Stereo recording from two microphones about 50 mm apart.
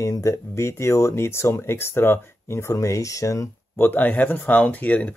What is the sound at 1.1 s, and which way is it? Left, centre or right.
Speech, left.